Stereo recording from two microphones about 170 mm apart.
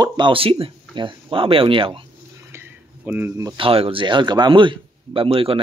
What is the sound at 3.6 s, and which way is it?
A man's voice, 35° right (ahead or behind).